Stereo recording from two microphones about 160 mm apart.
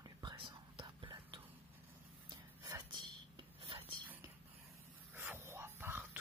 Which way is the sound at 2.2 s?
25° right (ahead or behind).